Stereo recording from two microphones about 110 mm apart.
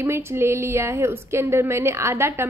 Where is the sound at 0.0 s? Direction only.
25° right (ahead or behind).